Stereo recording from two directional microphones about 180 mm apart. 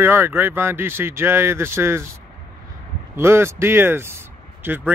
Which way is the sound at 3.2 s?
15° right (ahead or behind).